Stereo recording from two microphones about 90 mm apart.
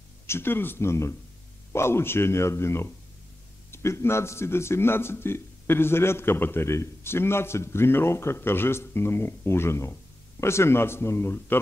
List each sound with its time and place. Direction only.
0.3 s a man's voice: 25° left (ahead or behind)